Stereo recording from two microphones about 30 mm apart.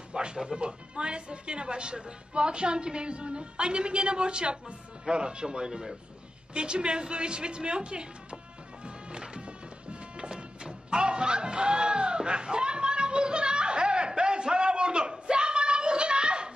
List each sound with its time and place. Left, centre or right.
0.1 s speech: right
8.8 s music: right